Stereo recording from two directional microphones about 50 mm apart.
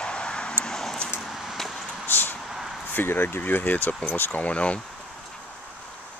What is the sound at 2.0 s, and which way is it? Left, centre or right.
Vehicle, left.